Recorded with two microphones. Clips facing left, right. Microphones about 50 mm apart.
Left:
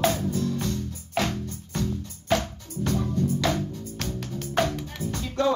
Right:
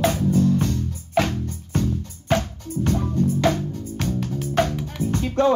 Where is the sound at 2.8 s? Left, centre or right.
Right.